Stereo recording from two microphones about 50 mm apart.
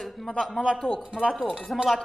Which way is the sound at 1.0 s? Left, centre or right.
Centre.